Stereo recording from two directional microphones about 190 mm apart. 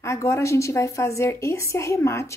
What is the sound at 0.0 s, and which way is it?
A woman's voice, 15° left (ahead or behind).